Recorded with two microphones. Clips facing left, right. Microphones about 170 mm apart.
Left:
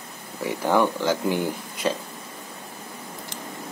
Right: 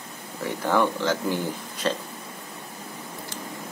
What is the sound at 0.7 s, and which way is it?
Speech, 15° left (ahead or behind).